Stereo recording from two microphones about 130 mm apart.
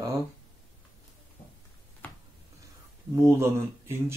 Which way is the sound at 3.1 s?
20° right (ahead or behind).